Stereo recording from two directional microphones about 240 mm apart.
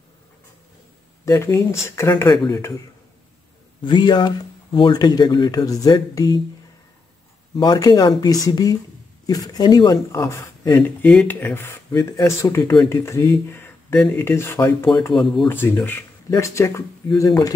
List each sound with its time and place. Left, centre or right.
1.2 s speech: centre
3.8 s speech: centre
7.5 s speech: centre